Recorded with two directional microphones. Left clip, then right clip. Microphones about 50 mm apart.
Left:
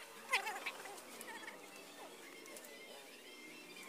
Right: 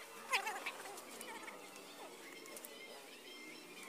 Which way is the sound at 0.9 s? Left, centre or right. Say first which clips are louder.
Right 1 dB; left.